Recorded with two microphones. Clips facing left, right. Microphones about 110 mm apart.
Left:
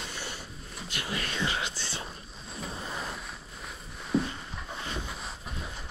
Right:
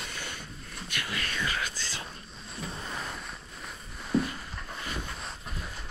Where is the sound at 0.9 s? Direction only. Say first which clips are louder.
Left 1 dB; 25° left (ahead or behind).